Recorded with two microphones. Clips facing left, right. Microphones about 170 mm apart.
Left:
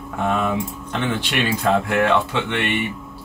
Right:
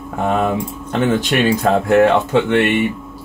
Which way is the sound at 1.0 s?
45° right (ahead or behind).